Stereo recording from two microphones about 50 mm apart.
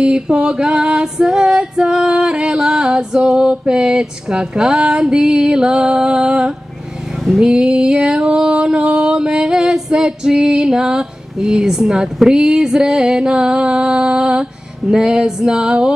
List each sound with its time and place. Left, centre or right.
0.0 s music: centre